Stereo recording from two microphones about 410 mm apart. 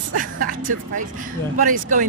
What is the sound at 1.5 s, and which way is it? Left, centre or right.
Speech, centre.